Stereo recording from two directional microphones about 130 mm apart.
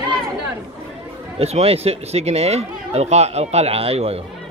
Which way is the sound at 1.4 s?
50° right (ahead or behind).